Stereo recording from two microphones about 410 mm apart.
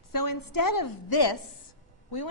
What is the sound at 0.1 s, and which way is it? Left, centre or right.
A woman's voice, left.